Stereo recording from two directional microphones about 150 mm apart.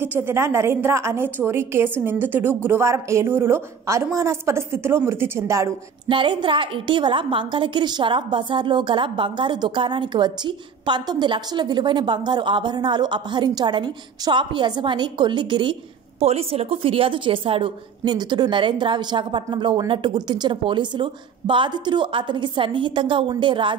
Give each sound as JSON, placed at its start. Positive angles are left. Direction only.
{"t": 0.0, "sound": "a woman's voice", "side_deg": -15}
{"t": 6.0, "sound": "a woman's voice", "side_deg": -35}
{"t": 16.2, "sound": "a woman's voice", "side_deg": -45}